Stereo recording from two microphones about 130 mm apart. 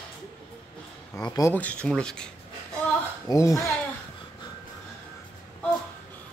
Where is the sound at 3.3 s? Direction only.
25° left (ahead or behind).